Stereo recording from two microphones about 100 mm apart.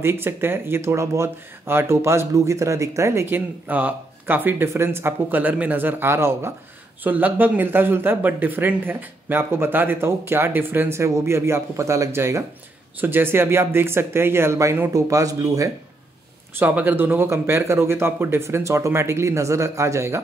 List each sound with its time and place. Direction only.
0.0 s speech: 25° right (ahead or behind)
16.5 s speech: 20° right (ahead or behind)